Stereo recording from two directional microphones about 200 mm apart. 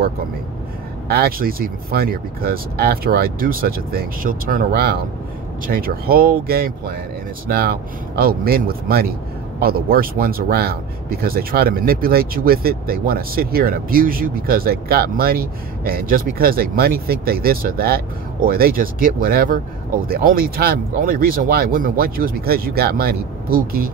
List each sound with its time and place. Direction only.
1.0 s speech: 50° right (ahead or behind)